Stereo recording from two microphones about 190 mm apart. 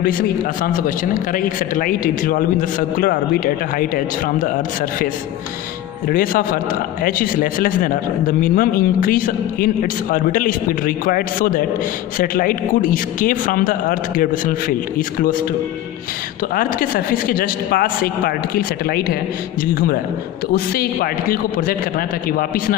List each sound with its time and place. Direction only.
0.6 s speech: 45° left (ahead or behind)
6.0 s speech: 50° left (ahead or behind)
16.5 s speech: 50° left (ahead or behind)